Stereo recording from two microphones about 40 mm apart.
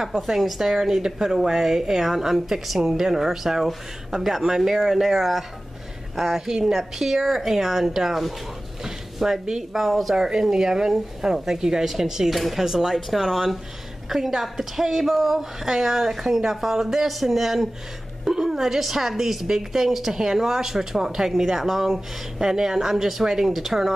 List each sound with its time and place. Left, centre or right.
0.0 s a woman's voice: centre
10.1 s a woman's voice: centre